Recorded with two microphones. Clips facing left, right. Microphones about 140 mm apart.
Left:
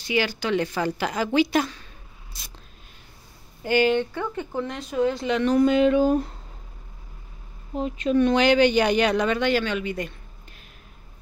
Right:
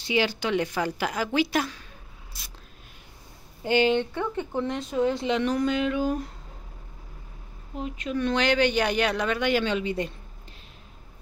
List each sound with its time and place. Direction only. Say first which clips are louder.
0.0 s speech: even; 25° right (ahead or behind); by 1.9 s 5° right (ahead or behind)
2.3 s a sound: left 2 dB; 10° right (ahead or behind)
3.6 s a woman's voice: left 1 dB; 25° right (ahead or behind)
5.7 s speech: left 7 dB; 30° left (ahead or behind)
7.7 s a woman's voice: left 7 dB; 30° left (ahead or behind)
8.4 s speech: left 5 dB; centre (ahead or behind)
9.5 s a woman's voice: left 1 dB; 20° right (ahead or behind)